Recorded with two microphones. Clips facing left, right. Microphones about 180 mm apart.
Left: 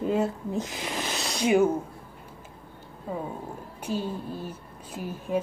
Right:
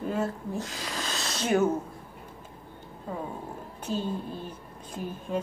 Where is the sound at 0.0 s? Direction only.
20° left (ahead or behind).